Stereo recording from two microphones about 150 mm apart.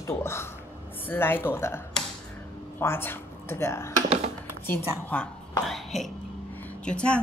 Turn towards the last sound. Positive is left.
turn(degrees=5)  # may be behind; listen again after turning